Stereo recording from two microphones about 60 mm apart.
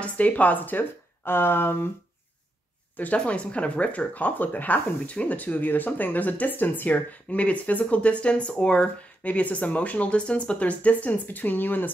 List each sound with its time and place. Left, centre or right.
0.0 s speech: left
3.2 s speech: left